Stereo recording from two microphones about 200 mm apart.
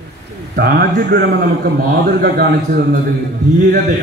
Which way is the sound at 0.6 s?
50° right (ahead or behind).